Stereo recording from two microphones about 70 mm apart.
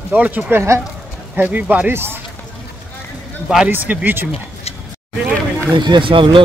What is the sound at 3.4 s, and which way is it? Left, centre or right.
Speech, centre.